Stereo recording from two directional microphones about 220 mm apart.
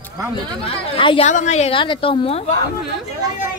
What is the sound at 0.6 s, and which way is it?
A woman's voice, 25° left (ahead or behind).